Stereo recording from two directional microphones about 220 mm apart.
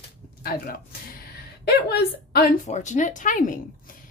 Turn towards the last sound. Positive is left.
turn(degrees=35)  # may be behind; listen again after turning